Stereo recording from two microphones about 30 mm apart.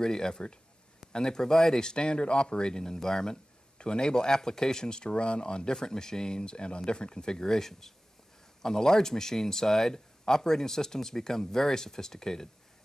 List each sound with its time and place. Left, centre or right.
0.0 s speech: left
1.8 s speech: left
5.8 s speech: left